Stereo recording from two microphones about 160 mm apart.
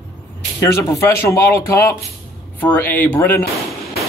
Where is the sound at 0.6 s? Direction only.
20° left (ahead or behind).